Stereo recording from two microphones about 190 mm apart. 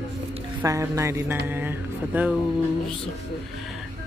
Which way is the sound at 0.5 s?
15° right (ahead or behind).